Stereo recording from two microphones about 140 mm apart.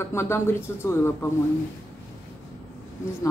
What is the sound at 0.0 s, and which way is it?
A man's voice, 20° left (ahead or behind).